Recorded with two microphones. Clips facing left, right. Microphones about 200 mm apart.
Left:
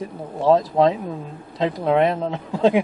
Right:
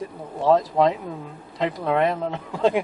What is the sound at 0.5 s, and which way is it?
Speech, 20° left (ahead or behind).